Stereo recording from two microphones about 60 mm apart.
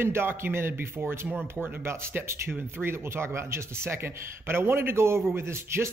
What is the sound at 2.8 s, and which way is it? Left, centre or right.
Speech, right.